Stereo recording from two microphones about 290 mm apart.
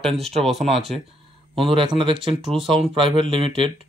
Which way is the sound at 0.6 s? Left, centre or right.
Right.